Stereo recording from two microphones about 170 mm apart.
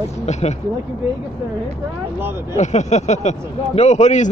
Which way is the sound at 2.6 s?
45° left (ahead or behind).